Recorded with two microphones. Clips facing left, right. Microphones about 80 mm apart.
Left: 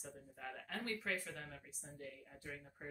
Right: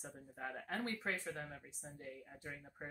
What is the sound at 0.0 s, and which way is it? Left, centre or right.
Speech, right.